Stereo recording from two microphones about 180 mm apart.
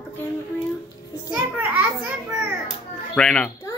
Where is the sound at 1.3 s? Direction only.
10° right (ahead or behind).